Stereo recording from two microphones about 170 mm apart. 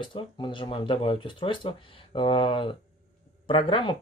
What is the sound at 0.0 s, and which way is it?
Speech, 30° left (ahead or behind).